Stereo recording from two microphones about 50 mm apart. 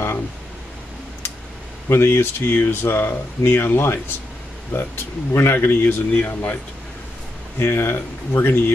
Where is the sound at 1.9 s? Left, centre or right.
Left.